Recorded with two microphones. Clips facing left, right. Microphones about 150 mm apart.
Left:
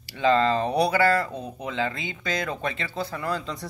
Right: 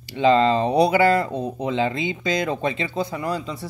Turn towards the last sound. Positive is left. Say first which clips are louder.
# right 3 dB
turn(degrees=-10)  # may be behind; listen again after turning